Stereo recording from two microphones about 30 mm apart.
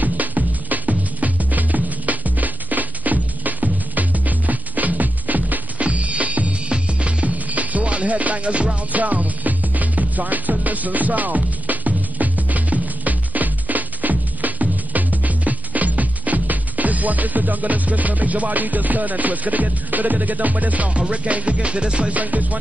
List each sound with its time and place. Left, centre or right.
0.0 s music: right
5.8 s music: right
6.7 s music: right
21.5 s music: right
22.1 s music: right